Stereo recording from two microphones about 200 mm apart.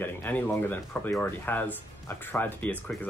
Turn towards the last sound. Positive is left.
turn(degrees=5)  # may be behind; listen again after turning